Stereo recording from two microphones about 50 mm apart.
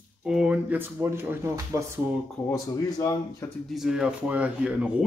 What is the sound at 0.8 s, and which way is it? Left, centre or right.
Speech, right.